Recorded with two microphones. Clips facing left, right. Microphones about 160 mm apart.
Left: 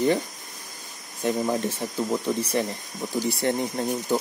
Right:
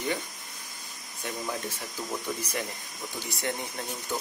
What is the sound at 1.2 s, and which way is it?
Speech, 30° left (ahead or behind).